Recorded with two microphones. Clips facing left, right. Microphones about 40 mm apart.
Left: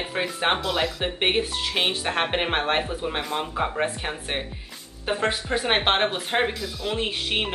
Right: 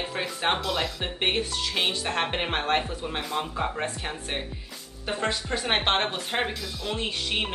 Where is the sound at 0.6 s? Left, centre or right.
Centre.